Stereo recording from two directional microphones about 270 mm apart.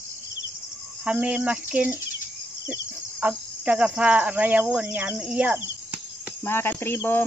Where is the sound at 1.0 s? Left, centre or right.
Centre.